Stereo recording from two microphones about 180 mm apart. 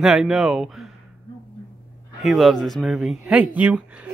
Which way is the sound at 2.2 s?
Centre (ahead or behind).